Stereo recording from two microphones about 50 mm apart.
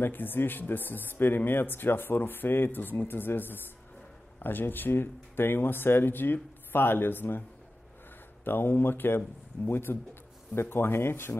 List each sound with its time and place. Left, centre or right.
0.0 s speech: left
8.5 s speech: left